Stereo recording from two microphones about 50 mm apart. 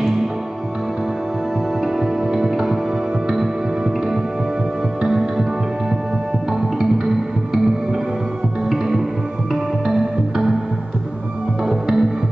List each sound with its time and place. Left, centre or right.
2.0 s music: centre
11.6 s music: centre